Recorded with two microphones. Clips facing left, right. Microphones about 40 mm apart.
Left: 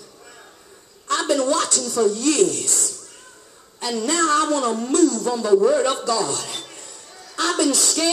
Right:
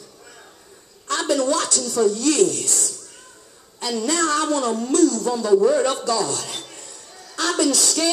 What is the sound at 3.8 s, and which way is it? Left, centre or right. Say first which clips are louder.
Speech: left 1 dB; centre.